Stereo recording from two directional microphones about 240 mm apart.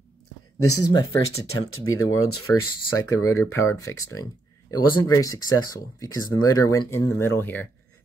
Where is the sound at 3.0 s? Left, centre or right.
Centre.